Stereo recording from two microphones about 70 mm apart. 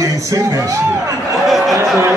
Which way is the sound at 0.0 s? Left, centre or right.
Right.